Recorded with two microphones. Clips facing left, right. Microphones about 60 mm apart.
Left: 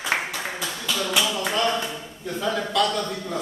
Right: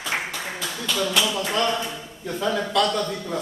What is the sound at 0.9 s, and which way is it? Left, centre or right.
A man's voice, centre.